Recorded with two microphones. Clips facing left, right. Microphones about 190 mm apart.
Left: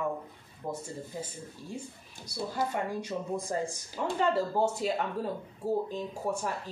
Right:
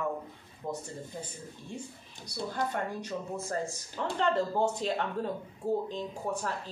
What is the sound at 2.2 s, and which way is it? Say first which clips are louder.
Speech: left 1 dB; 10° left (ahead or behind).